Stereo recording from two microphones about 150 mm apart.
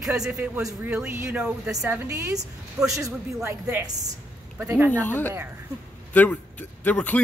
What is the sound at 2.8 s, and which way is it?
Speech, 5° right (ahead or behind).